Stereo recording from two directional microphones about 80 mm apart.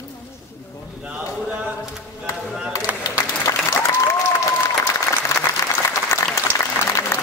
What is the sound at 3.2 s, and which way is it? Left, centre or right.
Applause, left.